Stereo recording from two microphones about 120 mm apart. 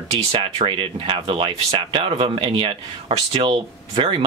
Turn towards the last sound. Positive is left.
turn(degrees=-50)  # may be behind; listen again after turning